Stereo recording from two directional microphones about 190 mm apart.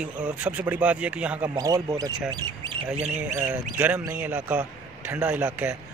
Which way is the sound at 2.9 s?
35° right (ahead or behind).